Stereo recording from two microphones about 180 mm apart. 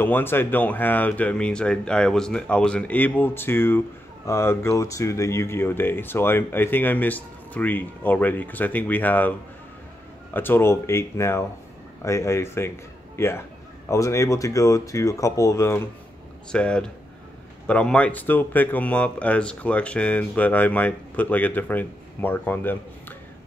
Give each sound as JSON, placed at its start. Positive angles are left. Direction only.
{"t": 0.0, "sound": "speech", "side_deg": 10}
{"t": 10.3, "sound": "a man's voice", "side_deg": 10}